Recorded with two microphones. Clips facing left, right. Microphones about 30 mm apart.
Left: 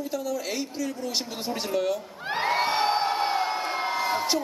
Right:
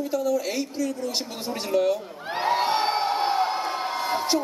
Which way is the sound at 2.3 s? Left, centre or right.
Centre.